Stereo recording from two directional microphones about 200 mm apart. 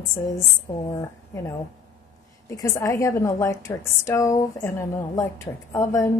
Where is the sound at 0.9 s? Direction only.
15° left (ahead or behind).